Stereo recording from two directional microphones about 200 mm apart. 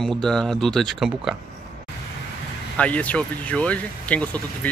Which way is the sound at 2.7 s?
5° left (ahead or behind).